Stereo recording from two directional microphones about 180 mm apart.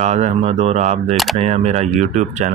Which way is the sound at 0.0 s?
40° right (ahead or behind).